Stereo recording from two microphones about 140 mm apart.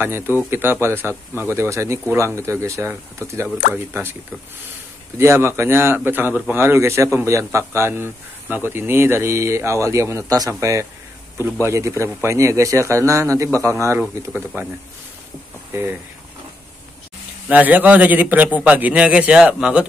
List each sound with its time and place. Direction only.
0.5 s a man's voice: 15° right (ahead or behind)
15.7 s speech: 15° right (ahead or behind)
17.5 s speech: 10° right (ahead or behind)